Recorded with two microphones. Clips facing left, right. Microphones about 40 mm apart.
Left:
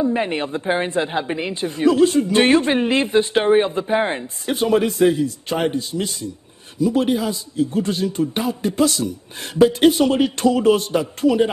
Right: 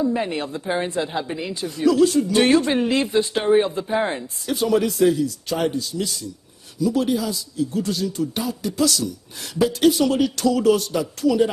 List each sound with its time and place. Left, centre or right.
0.0 s speech: left